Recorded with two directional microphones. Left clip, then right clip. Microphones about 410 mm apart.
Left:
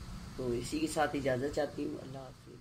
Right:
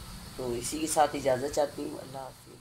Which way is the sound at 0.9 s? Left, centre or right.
Right.